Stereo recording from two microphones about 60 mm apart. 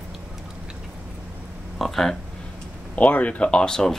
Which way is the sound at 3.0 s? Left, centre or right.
Left.